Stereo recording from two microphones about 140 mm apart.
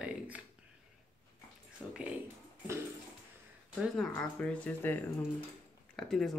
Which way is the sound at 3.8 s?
5° left (ahead or behind).